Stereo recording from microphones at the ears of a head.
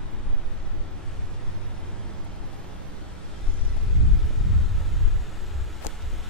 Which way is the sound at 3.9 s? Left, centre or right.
Left.